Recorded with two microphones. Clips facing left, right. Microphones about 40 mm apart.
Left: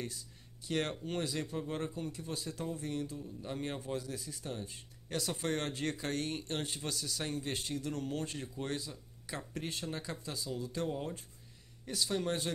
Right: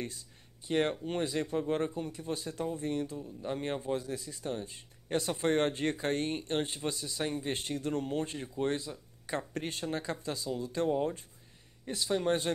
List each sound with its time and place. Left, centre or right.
0.7 s speech: right
3.2 s speech: right
7.5 s speech: right
11.8 s speech: right